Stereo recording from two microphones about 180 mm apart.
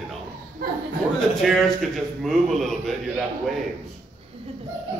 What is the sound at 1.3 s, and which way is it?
A man's voice, centre (ahead or behind).